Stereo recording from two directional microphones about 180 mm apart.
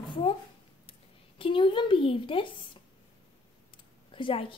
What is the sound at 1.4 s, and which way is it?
A woman's voice, 30° left (ahead or behind).